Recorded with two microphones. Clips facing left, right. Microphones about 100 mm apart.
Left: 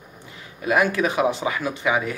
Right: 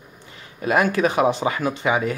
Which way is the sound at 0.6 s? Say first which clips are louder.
Right 1 dB; 40° right (ahead or behind).